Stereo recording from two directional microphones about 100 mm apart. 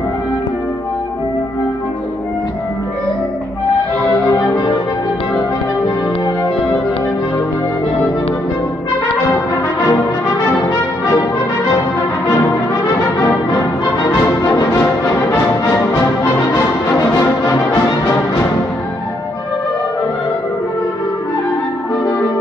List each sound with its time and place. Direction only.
9.8 s brass instrument: 30° left (ahead or behind)
12.3 s brass instrument: 30° left (ahead or behind)
13.6 s music: 25° left (ahead or behind)